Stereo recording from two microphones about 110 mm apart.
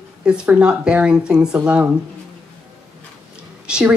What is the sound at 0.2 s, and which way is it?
Speech, 10° right (ahead or behind).